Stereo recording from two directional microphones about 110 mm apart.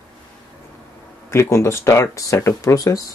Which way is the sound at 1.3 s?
25° left (ahead or behind).